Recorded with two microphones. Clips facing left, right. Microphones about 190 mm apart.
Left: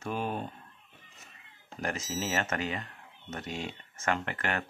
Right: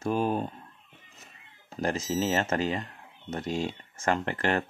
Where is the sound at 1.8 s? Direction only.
30° right (ahead or behind).